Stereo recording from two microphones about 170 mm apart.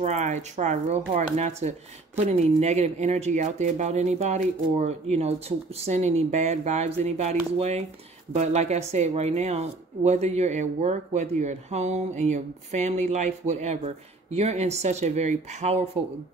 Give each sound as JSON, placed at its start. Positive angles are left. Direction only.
{"t": 0.0, "sound": "speech", "side_deg": -45}